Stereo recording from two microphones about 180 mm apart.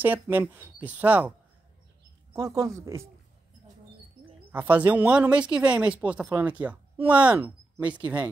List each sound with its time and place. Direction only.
0.0 s speech: 10° right (ahead or behind)
2.3 s speech: 20° right (ahead or behind)
4.5 s speech: 10° right (ahead or behind)